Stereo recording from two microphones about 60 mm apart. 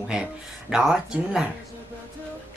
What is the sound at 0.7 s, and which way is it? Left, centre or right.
Speech, centre.